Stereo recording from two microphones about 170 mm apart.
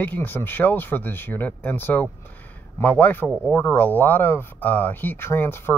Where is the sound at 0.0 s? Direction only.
10° left (ahead or behind).